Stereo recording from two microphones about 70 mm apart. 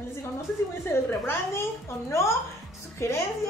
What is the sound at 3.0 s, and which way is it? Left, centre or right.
Speech, left.